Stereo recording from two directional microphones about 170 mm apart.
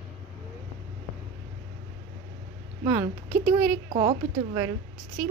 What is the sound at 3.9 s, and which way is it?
Speech, 35° right (ahead or behind).